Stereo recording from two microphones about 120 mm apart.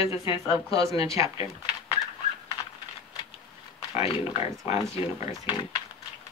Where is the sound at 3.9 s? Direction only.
50° left (ahead or behind).